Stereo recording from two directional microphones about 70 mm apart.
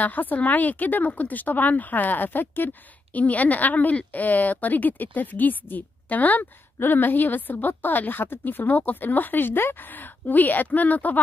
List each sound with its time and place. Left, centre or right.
0.0 s speech: left